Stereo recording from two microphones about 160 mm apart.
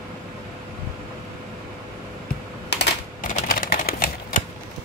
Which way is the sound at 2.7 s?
90° left.